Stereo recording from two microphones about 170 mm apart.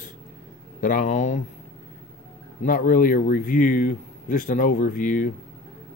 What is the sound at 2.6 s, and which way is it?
A man's voice, 55° left (ahead or behind).